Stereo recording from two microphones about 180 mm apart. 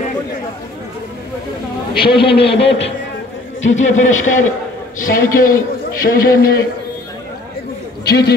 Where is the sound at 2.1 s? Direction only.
70° left (ahead or behind).